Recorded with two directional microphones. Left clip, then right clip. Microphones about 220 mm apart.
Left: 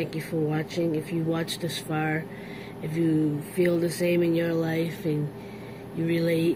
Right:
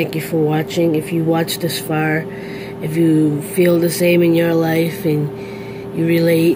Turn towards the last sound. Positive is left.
turn(degrees=-5)  # may be behind; listen again after turning